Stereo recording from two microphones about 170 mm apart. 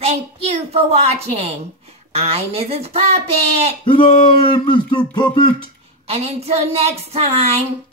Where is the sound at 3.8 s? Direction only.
30° left (ahead or behind).